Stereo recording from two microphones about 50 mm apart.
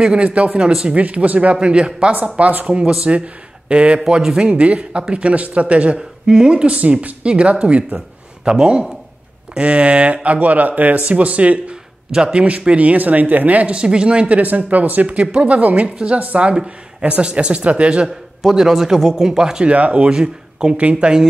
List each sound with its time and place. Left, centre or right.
0.0 s speech: centre
0.5 s a man's voice: centre
0.8 s speech: right
1.6 s speech: centre
5.9 s a man's voice: centre
12.1 s a man's voice: centre
12.4 s speech: right
13.7 s speech: centre
18.0 s a man's voice: centre
19.7 s a man's voice: right